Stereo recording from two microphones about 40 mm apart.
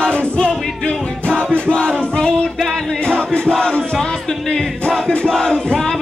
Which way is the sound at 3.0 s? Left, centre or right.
Left.